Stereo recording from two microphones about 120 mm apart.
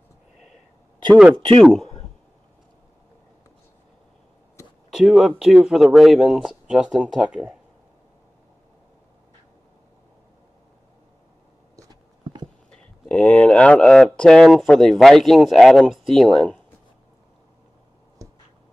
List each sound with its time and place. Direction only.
1.6 s speech: centre (ahead or behind)
4.9 s speech: centre (ahead or behind)
12.7 s speech: 5° left (ahead or behind)
18.2 s a sound: 25° right (ahead or behind)